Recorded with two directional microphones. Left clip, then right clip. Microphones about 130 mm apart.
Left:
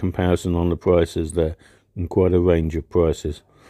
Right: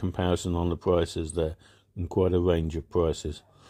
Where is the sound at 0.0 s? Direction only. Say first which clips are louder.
Left 6 dB; 40° left (ahead or behind).